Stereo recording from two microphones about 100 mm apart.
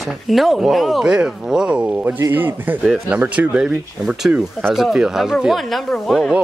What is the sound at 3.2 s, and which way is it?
Speech, 15° right (ahead or behind).